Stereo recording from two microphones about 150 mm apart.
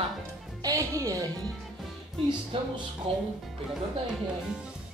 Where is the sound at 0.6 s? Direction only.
20° right (ahead or behind).